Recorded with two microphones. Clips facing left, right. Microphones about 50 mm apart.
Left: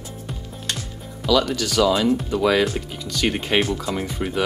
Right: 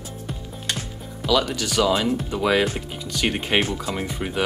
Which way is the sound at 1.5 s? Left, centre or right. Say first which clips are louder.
Left 2 dB; right.